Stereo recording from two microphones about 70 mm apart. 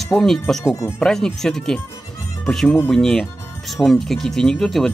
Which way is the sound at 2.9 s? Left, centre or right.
Centre.